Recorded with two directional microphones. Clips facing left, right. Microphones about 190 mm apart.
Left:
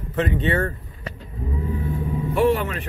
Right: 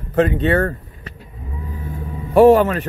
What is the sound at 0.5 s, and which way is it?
Speech, 55° right (ahead or behind).